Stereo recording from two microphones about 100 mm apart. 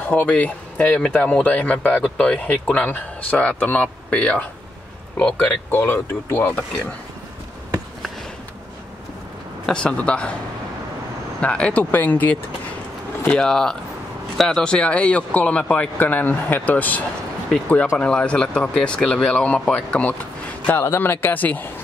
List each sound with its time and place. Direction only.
0.0 s speech: 15° left (ahead or behind)
9.7 s speech: 10° left (ahead or behind)
11.4 s speech: 10° left (ahead or behind)
13.5 s speech: 5° left (ahead or behind)
20.8 s speech: 25° left (ahead or behind)